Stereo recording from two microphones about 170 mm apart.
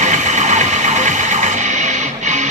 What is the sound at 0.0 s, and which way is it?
Music, 45° right (ahead or behind).